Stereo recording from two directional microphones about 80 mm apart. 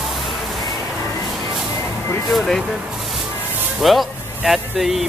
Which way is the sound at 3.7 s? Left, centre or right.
Centre.